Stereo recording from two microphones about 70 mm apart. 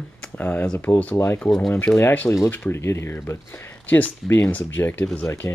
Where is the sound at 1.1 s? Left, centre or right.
Left.